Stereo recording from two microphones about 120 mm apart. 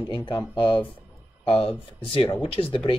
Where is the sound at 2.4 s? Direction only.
50° left (ahead or behind).